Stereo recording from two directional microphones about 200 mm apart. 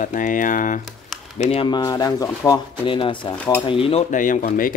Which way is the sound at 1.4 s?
25° left (ahead or behind).